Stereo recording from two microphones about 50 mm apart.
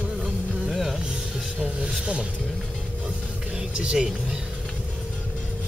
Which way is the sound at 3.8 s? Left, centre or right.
Centre.